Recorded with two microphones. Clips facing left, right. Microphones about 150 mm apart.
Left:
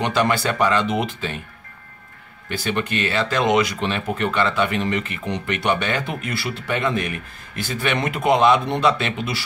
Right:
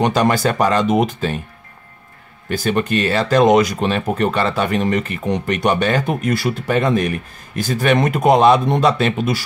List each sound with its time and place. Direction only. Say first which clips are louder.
0.0 s speech: right 4 dB; 40° right (ahead or behind)
2.5 s speech: right 6 dB; 40° right (ahead or behind)